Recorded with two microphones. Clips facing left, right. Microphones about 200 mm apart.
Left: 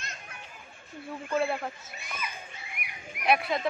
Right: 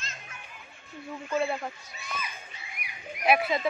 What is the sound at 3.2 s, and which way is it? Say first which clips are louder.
Speech: right 2 dB; centre (ahead or behind).